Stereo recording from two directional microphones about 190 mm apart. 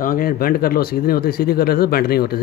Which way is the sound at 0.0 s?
45° left (ahead or behind).